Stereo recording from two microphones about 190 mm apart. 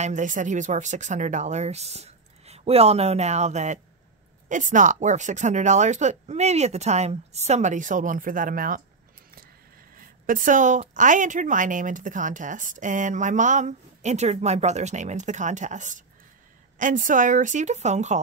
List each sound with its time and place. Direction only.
0.0 s a woman's voice: 40° right (ahead or behind)
9.9 s a woman's voice: 45° right (ahead or behind)